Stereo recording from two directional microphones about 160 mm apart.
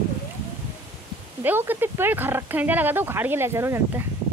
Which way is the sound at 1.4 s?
10° right (ahead or behind).